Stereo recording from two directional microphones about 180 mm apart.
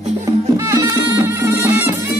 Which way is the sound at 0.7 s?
20° right (ahead or behind).